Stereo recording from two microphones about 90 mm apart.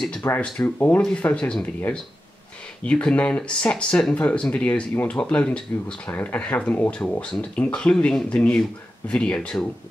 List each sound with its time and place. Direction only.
0.4 s speech: 15° left (ahead or behind)
2.8 s speech: 10° left (ahead or behind)